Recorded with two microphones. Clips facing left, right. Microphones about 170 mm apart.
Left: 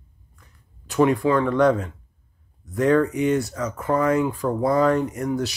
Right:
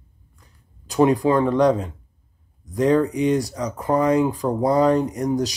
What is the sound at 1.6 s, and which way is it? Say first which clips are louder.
Speech: right 1 dB; 20° right (ahead or behind).